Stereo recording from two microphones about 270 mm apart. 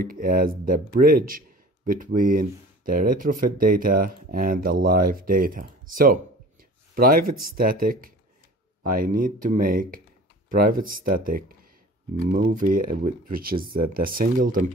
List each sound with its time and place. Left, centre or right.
0.0 s speech: right